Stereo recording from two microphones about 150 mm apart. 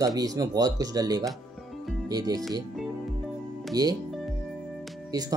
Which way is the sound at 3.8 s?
25° right (ahead or behind).